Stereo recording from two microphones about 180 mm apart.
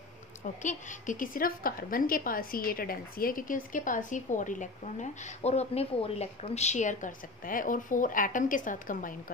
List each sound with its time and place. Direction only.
0.6 s a woman's voice: 45° left (ahead or behind)